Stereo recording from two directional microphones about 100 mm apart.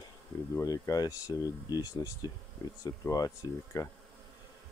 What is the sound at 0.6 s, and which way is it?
Speech, 35° left (ahead or behind).